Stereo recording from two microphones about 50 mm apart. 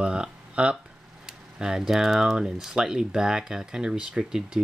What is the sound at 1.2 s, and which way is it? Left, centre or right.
Speech, centre.